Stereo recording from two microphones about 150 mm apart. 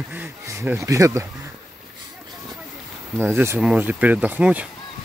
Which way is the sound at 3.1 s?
15° right (ahead or behind).